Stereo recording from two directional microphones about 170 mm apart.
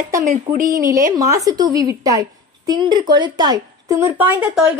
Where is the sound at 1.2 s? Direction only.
20° right (ahead or behind).